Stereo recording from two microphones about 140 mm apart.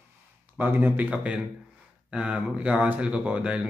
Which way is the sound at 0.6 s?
15° right (ahead or behind).